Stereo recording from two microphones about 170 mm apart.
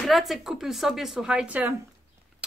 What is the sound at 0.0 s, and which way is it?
Speech, centre (ahead or behind).